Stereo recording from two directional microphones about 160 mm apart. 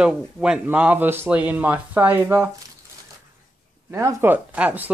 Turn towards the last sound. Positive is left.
turn(degrees=-10)  # may be behind; listen again after turning